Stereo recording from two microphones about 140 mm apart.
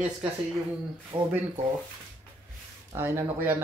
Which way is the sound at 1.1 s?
40° right (ahead or behind).